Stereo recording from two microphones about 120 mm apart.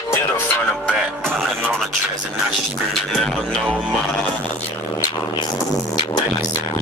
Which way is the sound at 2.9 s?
Centre (ahead or behind).